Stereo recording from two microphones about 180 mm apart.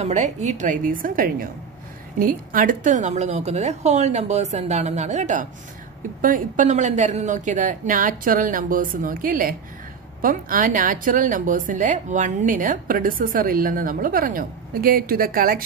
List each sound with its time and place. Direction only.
0.0 s a woman's voice: 40° right (ahead or behind)